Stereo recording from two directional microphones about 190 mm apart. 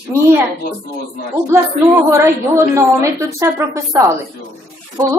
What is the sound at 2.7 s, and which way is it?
A woman's voice, 15° right (ahead or behind).